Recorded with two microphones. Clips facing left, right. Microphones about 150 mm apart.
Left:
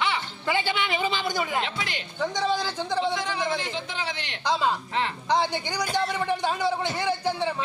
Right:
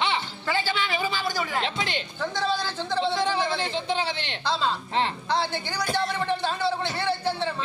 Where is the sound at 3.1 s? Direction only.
30° right (ahead or behind).